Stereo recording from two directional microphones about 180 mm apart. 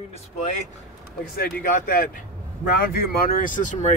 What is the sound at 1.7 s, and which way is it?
Speech, 50° left (ahead or behind).